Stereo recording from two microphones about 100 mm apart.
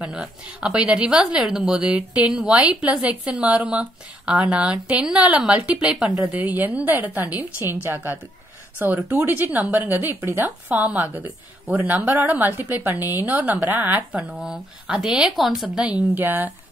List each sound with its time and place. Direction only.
0.0 s a woman's voice: 10° right (ahead or behind)